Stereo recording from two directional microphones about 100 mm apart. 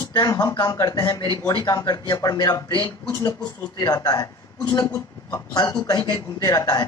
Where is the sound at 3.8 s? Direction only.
40° left (ahead or behind).